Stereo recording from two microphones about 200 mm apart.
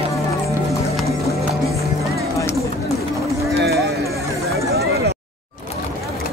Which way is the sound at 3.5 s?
55° right (ahead or behind).